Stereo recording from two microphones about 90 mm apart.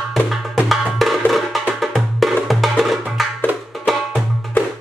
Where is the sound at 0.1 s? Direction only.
Centre (ahead or behind).